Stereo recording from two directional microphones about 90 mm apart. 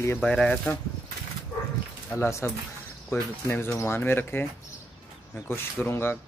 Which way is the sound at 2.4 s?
25° left (ahead or behind).